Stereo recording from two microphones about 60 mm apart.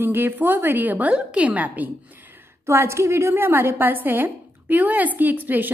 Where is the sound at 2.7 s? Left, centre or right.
Right.